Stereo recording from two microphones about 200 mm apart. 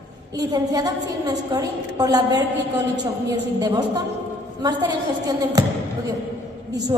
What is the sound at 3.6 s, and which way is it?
Speech, 20° right (ahead or behind).